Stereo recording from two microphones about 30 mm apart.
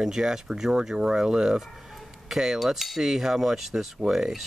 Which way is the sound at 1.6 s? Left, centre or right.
Centre.